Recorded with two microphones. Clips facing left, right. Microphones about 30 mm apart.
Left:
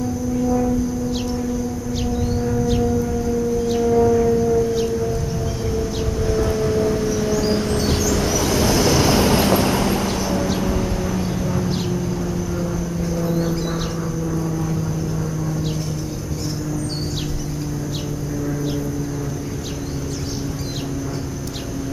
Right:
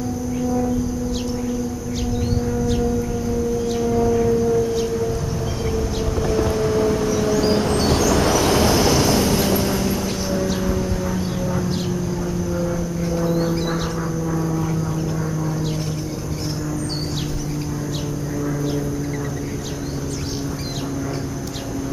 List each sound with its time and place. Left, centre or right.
3.6 s siren: centre
6.4 s vehicle: centre
8.0 s vehicle: right
8.5 s vehicle: centre
9.0 s vehicle: centre
9.6 s vehicle: left
10.0 s a sound: centre
10.5 s vehicle: centre
13.1 s a sound: centre
14.3 s vehicle: centre